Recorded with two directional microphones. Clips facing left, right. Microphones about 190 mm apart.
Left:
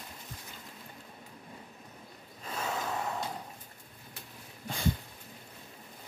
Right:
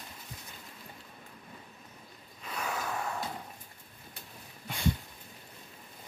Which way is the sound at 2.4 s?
25° left (ahead or behind).